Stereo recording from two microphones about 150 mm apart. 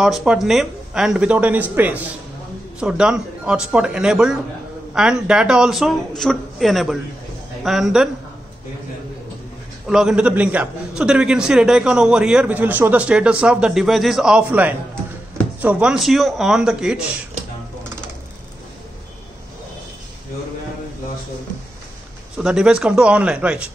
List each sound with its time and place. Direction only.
0.0 s speech: 5° right (ahead or behind)
9.8 s a man's voice: 5° right (ahead or behind)
22.4 s a man's voice: 5° right (ahead or behind)